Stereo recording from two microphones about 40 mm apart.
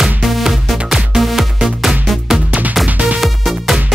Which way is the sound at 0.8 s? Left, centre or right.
Centre.